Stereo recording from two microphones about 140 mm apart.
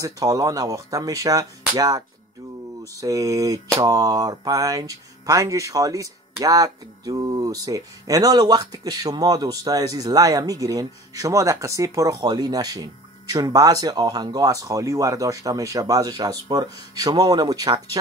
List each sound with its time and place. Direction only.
0.0 s speech: 25° right (ahead or behind)